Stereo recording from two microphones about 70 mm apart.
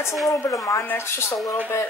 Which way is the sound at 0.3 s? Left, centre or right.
Left.